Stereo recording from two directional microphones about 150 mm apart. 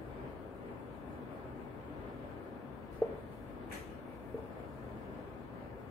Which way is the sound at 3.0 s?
15° left (ahead or behind).